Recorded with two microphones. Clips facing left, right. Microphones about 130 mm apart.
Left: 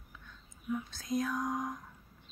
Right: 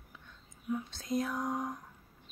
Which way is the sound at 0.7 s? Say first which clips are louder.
Right 1 dB; 25° right (ahead or behind).